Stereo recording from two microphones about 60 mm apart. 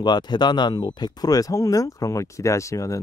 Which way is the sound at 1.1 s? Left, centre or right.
Left.